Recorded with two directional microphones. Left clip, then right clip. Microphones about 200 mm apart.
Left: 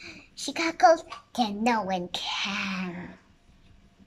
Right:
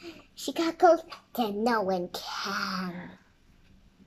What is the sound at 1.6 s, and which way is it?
Speech, 15° left (ahead or behind).